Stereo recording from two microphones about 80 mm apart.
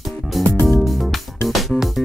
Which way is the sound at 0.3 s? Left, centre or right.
Centre.